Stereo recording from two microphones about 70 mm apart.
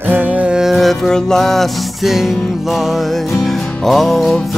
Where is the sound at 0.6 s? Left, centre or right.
Centre.